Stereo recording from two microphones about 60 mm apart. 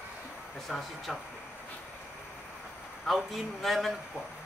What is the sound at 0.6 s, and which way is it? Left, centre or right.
Speech, centre.